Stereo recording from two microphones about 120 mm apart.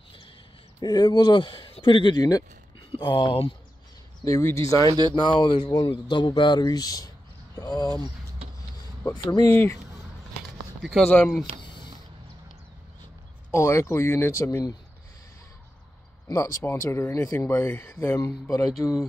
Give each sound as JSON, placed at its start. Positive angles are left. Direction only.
{"t": 0.7, "sound": "speech", "side_deg": 35}
{"t": 4.2, "sound": "speech", "side_deg": 20}
{"t": 5.1, "sound": "speech", "side_deg": 40}
{"t": 9.5, "sound": "speech", "side_deg": 15}
{"t": 10.8, "sound": "speech", "side_deg": 0}
{"t": 11.1, "sound": "speech", "side_deg": 15}
{"t": 11.6, "sound": "a sound", "side_deg": 40}
{"t": 13.5, "sound": "speech", "side_deg": 25}
{"t": 16.6, "sound": "speech", "side_deg": 20}